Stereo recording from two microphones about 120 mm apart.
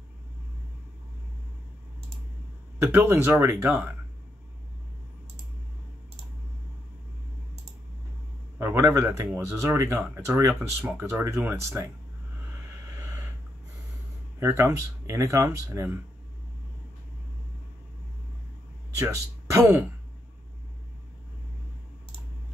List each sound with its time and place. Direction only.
2.8 s speech: 20° right (ahead or behind)
8.5 s speech: 20° right (ahead or behind)
14.4 s speech: 25° right (ahead or behind)
18.9 s speech: 25° right (ahead or behind)